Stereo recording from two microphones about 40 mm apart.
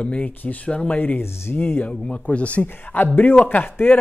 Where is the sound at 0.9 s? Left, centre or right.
Left.